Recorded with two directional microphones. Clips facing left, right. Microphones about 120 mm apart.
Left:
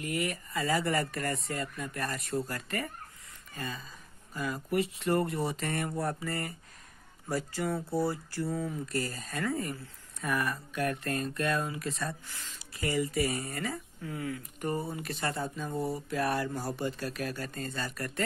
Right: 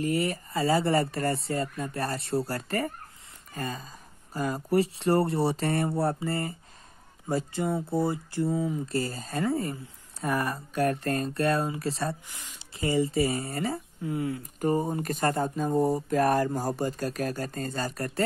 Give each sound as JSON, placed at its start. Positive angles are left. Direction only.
{"t": 0.0, "sound": "speech", "side_deg": -30}
{"t": 12.3, "sound": "speech", "side_deg": -15}
{"t": 14.8, "sound": "speech", "side_deg": -40}